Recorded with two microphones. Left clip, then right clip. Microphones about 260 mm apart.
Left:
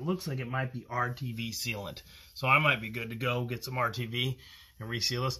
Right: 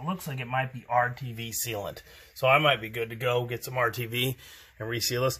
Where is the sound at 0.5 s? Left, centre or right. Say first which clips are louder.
Right 8 dB; centre.